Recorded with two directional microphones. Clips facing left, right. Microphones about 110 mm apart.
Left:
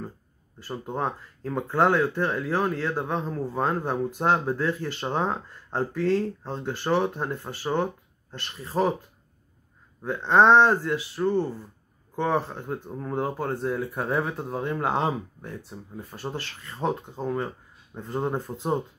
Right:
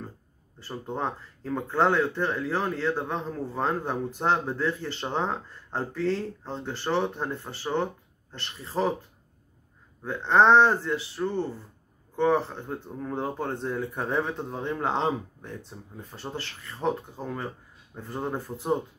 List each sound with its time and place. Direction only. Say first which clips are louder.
0.6 s speech: left 2 dB; 15° left (ahead or behind)
10.0 s speech: left 1 dB; 15° left (ahead or behind)